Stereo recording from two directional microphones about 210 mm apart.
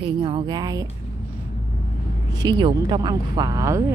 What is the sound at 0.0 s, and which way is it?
Speech, 25° right (ahead or behind).